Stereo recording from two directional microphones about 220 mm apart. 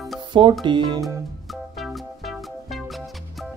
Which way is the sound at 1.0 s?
Centre (ahead or behind).